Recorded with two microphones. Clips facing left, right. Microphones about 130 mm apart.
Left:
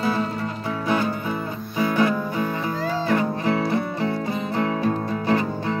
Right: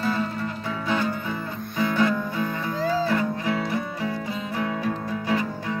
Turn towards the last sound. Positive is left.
turn(degrees=30)  # may be behind; listen again after turning